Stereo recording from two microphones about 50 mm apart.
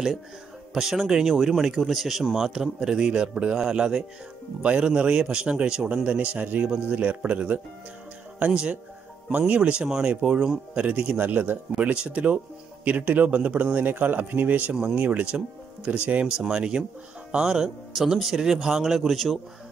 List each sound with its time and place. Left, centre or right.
0.7 s a man's voice: centre; by 11.0 s right
11.1 s a man's voice: right
11.8 s a man's voice: right; by 19.4 s centre